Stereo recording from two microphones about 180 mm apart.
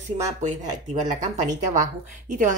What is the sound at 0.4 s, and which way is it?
Speech, 40° right (ahead or behind).